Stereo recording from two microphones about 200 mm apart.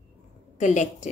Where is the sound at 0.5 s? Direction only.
40° left (ahead or behind).